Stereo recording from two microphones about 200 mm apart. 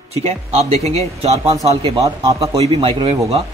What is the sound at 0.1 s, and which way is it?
Speech, 30° right (ahead or behind).